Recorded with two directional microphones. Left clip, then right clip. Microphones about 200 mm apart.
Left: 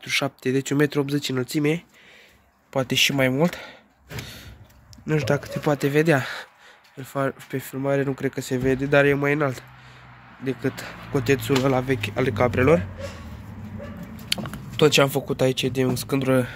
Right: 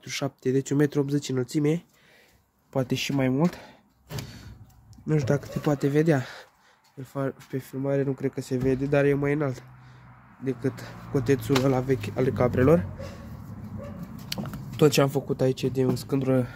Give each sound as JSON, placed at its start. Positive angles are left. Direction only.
{"t": 0.0, "sound": "speech", "side_deg": -15}
{"t": 5.0, "sound": "speech", "side_deg": -20}
{"t": 14.3, "sound": "speech", "side_deg": -20}